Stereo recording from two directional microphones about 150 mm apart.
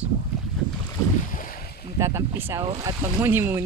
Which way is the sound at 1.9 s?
20° right (ahead or behind).